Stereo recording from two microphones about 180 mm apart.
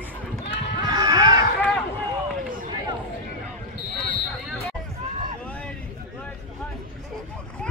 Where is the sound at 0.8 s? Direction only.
20° right (ahead or behind).